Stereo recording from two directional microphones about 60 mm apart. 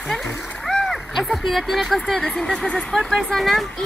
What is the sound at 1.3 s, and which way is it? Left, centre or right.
Speech, centre.